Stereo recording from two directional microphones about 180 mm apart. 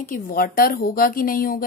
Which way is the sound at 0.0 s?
50° left (ahead or behind).